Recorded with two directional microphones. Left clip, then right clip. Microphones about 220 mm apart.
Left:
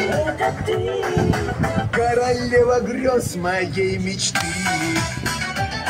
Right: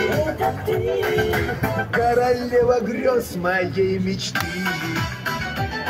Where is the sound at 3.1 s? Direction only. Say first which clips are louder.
Right 1 dB; 50° left (ahead or behind).